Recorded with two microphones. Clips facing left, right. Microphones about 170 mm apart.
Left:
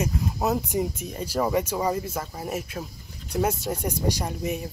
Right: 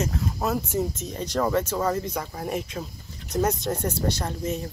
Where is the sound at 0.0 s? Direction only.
15° left (ahead or behind).